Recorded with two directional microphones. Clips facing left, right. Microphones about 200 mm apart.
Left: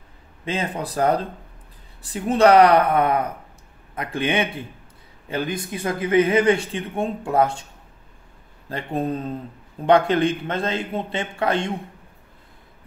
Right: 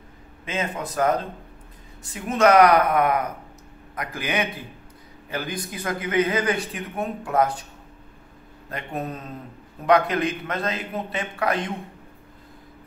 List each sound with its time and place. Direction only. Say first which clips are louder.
0.5 s a man's voice: left 2 dB; 35° left (ahead or behind)
8.6 s a man's voice: left 6 dB; 30° left (ahead or behind)